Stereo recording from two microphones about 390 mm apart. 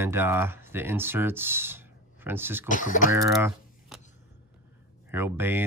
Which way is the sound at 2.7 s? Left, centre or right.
Centre.